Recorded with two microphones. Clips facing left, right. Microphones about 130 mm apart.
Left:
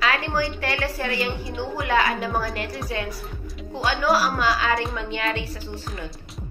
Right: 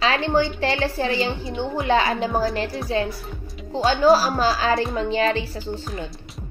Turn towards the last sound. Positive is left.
turn(degrees=-30)  # may be behind; listen again after turning